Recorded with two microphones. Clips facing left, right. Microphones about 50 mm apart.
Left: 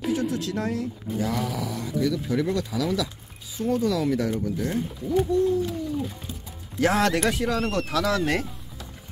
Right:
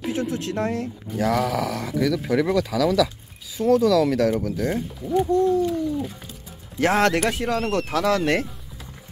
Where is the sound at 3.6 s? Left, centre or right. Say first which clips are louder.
Right 7 dB; centre.